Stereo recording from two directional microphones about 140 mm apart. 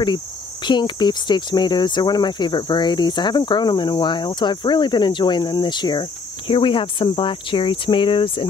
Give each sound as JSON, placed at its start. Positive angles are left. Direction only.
{"t": 0.7, "sound": "speech", "side_deg": 35}